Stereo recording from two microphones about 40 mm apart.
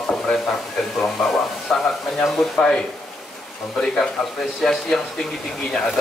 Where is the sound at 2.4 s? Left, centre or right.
Centre.